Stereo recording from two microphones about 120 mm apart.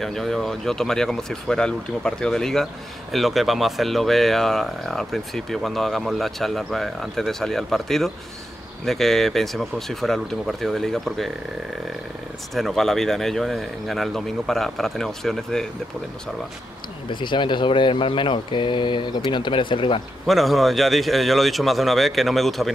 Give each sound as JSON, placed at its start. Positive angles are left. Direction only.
{"t": 0.0, "sound": "speech", "side_deg": 0}
{"t": 12.5, "sound": "speech", "side_deg": 0}
{"t": 17.1, "sound": "speech", "side_deg": 40}
{"t": 20.2, "sound": "speech", "side_deg": 0}